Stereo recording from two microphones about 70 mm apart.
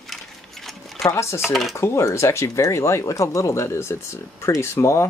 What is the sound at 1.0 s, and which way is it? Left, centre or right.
Speech, left.